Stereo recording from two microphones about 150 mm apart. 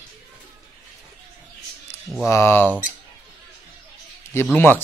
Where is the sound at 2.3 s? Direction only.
15° left (ahead or behind).